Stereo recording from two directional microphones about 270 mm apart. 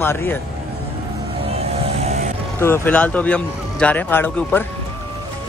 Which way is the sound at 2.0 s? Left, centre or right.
Right.